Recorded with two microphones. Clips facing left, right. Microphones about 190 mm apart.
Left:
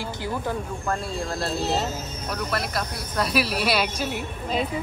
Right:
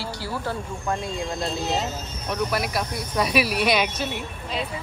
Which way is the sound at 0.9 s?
20° right (ahead or behind).